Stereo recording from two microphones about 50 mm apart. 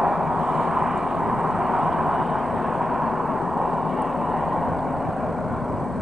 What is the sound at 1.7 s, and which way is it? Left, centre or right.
Vehicle, centre.